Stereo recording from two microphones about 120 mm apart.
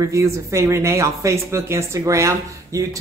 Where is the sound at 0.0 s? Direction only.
25° right (ahead or behind).